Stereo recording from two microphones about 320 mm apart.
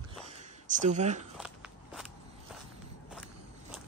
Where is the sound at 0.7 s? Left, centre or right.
Right.